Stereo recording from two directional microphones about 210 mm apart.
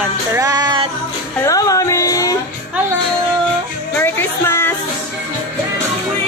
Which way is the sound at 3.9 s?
10° left (ahead or behind).